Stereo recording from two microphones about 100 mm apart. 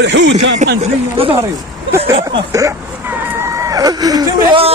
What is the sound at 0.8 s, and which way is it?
Speech, 80° right.